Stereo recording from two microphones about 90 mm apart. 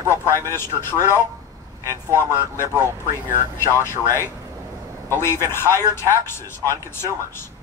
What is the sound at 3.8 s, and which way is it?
A man's voice, 30° left (ahead or behind).